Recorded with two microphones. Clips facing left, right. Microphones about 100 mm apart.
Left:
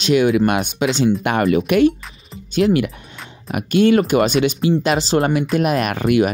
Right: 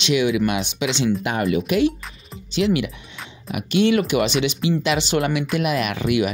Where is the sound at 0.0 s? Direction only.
45° left (ahead or behind).